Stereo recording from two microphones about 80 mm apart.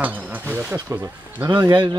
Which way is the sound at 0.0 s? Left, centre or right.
Right.